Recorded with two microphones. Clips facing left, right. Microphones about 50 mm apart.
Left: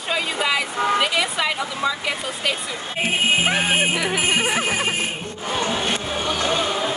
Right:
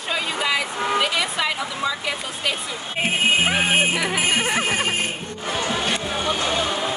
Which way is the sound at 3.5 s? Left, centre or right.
Centre.